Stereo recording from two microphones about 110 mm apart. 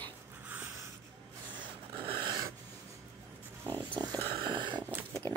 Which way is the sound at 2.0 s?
50° right (ahead or behind).